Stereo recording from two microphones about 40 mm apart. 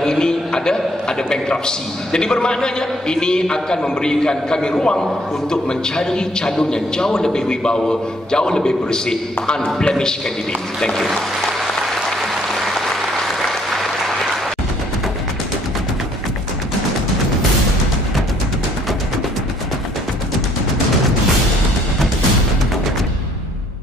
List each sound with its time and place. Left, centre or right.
0.0 s a man's voice: centre
11.0 s speech: centre
13.5 s applause: centre